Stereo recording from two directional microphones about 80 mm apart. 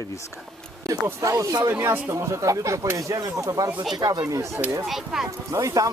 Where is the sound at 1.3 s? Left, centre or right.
Right.